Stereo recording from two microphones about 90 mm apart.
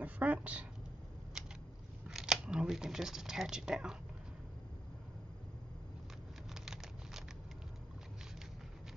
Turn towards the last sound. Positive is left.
turn(degrees=-5)  # may be behind; listen again after turning